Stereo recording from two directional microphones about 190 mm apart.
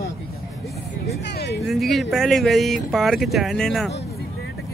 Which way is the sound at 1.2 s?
60° left (ahead or behind).